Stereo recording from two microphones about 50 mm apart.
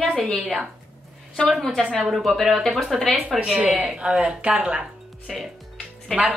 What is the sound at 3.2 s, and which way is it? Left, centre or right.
Speech, right.